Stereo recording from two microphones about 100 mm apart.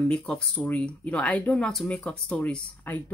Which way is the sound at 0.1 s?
10° left (ahead or behind).